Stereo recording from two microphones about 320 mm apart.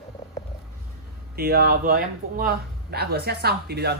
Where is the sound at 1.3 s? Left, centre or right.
Right.